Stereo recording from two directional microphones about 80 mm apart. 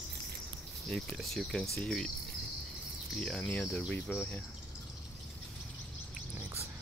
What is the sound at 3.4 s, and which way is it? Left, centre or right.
Speech, left.